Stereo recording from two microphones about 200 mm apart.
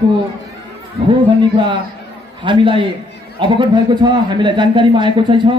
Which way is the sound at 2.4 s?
25° right (ahead or behind).